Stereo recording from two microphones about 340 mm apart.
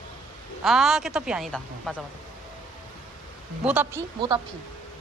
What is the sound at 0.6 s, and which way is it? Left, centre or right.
Speech, centre.